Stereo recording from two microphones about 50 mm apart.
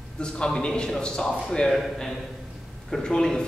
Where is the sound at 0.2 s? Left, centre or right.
Centre.